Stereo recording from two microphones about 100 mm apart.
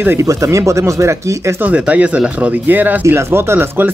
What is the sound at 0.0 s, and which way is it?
Speech, 20° right (ahead or behind).